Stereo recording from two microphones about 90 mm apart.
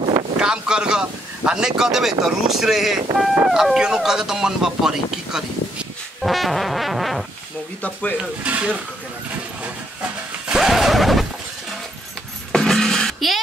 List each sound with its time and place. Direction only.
0.4 s speech: 10° right (ahead or behind)
7.8 s speech: 15° left (ahead or behind)
8.2 s speech: 15° right (ahead or behind)
10.5 s a sound: 5° right (ahead or behind)
12.5 s music: 5° left (ahead or behind)